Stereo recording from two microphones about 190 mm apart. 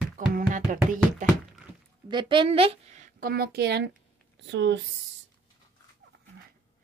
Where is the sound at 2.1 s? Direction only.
25° right (ahead or behind); by 4.7 s 70° right (ahead or behind).